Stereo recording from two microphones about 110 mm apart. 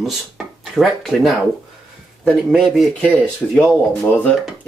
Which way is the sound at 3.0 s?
10° left (ahead or behind).